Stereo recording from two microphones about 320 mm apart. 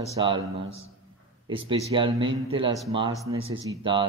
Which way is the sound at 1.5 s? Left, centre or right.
Centre.